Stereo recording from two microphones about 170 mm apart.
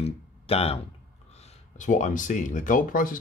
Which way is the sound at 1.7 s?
45° left (ahead or behind).